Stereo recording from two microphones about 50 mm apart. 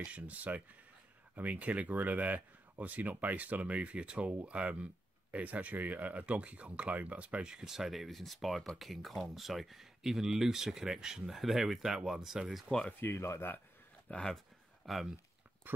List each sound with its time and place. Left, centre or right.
0.0 s speech: right
5.3 s speech: right
7.5 s speech: centre
13.0 s speech: left
14.1 s speech: left
14.9 s speech: centre
15.7 s speech: right